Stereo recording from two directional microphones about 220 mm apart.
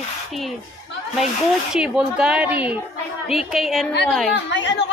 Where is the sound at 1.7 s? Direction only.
5° right (ahead or behind).